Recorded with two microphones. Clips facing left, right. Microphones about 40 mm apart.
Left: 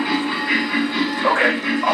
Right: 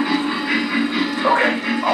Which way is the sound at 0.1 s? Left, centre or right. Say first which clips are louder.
Even; centre.